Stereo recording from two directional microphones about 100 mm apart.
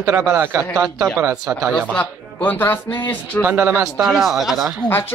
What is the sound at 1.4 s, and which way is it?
Speech, 5° right (ahead or behind).